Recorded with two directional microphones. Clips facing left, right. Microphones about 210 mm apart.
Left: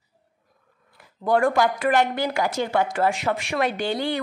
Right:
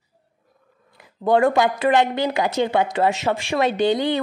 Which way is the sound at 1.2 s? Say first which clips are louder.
Right 3 dB; 25° right (ahead or behind).